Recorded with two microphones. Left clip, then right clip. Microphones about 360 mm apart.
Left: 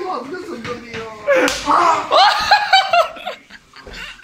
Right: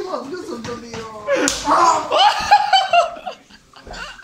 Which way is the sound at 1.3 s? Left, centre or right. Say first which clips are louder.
Left 5 dB; centre.